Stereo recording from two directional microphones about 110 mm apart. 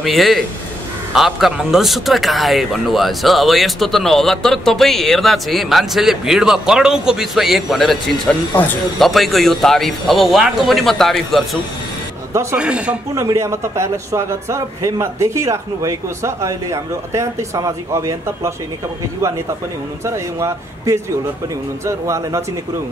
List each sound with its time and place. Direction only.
0.0 s a man's voice: centre (ahead or behind)
8.6 s speech: 15° left (ahead or behind)
9.0 s a man's voice: centre (ahead or behind)
12.5 s speech: 10° right (ahead or behind)
13.1 s a man's voice: 30° right (ahead or behind)
20.1 s a man's voice: 25° right (ahead or behind)